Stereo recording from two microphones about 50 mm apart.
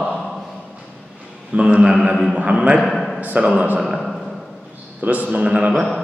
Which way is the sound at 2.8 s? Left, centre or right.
Centre.